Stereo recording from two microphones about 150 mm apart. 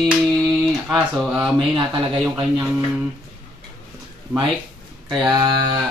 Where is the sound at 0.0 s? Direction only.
5° left (ahead or behind).